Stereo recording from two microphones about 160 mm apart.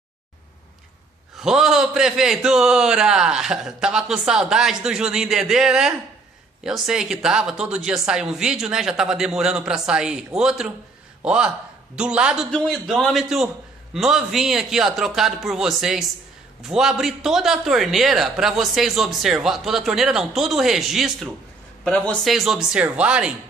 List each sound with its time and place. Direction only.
1.4 s a man's voice: 5° right (ahead or behind)